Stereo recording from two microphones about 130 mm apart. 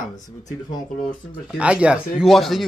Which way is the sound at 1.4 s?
5° right (ahead or behind).